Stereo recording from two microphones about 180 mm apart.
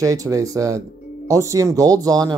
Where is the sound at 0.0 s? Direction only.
20° right (ahead or behind).